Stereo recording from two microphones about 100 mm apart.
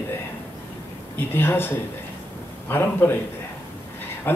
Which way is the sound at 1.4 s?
20° left (ahead or behind).